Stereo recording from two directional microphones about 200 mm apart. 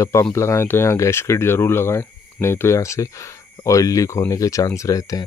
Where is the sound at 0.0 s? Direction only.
15° left (ahead or behind).